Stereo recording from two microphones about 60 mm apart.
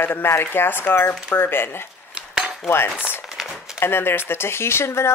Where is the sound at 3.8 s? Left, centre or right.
Left.